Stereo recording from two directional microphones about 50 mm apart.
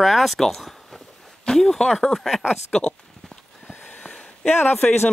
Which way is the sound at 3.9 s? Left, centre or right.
Left.